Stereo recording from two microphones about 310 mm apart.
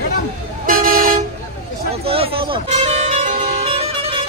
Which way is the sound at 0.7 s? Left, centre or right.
Right.